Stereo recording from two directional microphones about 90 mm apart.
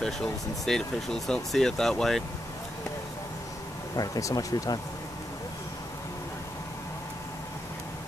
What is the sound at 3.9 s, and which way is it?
Speech, 45° left (ahead or behind).